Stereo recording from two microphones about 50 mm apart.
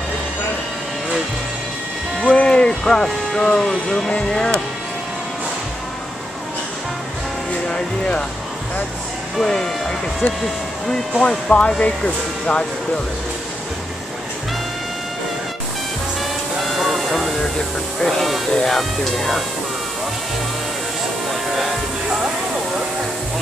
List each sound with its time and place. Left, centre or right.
2.2 s speech: centre
7.7 s speech: centre
9.4 s speech: centre
11.2 s speech: left
16.6 s music: centre
18.0 s a sound: centre
18.5 s speech: centre
21.3 s music: centre